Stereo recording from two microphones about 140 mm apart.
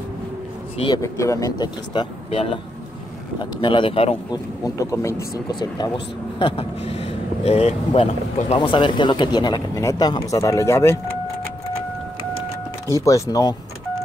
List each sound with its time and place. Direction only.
0.9 s speech: 20° left (ahead or behind)
2.3 s speech: 40° left (ahead or behind)
4.3 s speech: 25° left (ahead or behind)
5.5 s speech: 30° left (ahead or behind)
6.4 s speech: 45° left (ahead or behind)
8.5 s speech: 35° left (ahead or behind); by 11.0 s 20° left (ahead or behind)
12.8 s speech: 25° left (ahead or behind)